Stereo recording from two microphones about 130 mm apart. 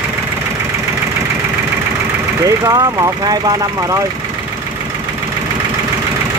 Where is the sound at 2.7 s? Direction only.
30° right (ahead or behind).